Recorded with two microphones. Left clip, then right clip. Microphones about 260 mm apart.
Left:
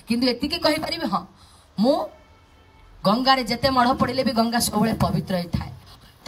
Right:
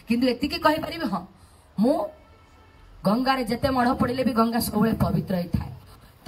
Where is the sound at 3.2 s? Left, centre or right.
Left.